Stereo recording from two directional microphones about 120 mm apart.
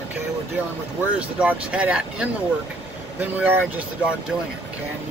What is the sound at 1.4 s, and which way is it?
Speech, 10° right (ahead or behind).